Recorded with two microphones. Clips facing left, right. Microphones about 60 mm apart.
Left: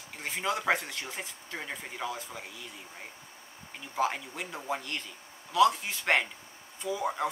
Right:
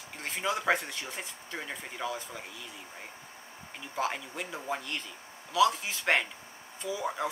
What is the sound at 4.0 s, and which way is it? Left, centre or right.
Speech, centre.